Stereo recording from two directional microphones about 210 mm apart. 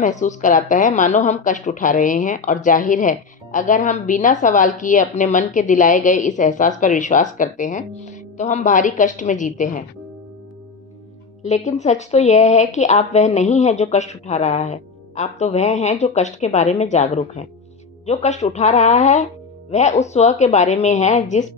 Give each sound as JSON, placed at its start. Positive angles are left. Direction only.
{"t": 0.0, "sound": "a woman's voice", "side_deg": 35}
{"t": 11.4, "sound": "a woman's voice", "side_deg": 35}